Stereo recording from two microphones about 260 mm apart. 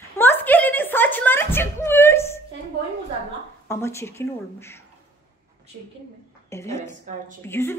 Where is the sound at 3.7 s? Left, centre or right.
Centre.